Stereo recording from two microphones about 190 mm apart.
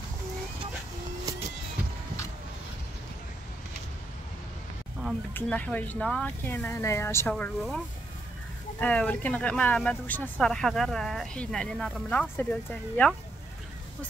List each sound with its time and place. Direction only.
1.3 s cat: 20° right (ahead or behind)
5.3 s speech: 10° left (ahead or behind)